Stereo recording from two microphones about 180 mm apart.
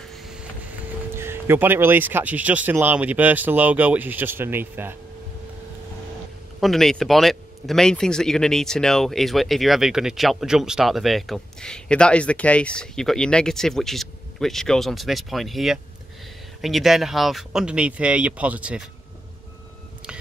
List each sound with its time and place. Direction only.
0.1 s vehicle: centre (ahead or behind)
1.1 s speech: 15° right (ahead or behind)
6.6 s speech: centre (ahead or behind)